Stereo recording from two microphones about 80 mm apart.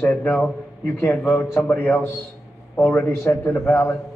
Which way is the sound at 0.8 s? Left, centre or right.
Left.